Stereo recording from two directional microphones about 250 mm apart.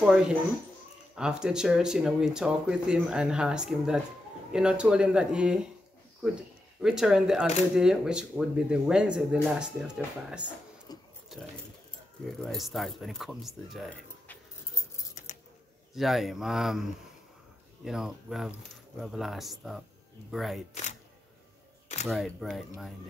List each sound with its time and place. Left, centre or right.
1.1 s speech: centre
6.8 s speech: centre
10.9 s a sound: centre
12.3 s speech: centre
15.9 s speech: centre
17.8 s speech: centre
22.0 s speech: centre